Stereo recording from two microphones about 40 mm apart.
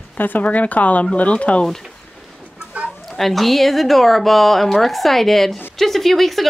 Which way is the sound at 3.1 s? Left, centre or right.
Centre.